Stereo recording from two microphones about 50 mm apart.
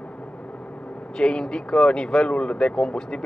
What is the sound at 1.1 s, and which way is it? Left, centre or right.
Speech, centre.